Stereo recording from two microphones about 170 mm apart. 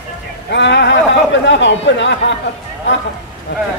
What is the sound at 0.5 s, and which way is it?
A man's voice, 90° left.